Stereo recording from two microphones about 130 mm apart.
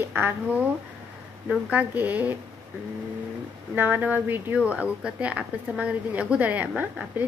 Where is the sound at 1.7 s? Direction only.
15° right (ahead or behind).